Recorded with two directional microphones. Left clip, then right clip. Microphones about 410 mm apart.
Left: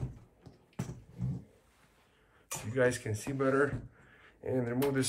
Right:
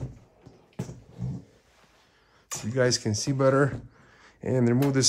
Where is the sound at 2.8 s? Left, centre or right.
Centre.